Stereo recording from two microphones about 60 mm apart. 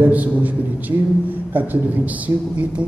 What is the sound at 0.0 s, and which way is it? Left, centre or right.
A woman's voice, right.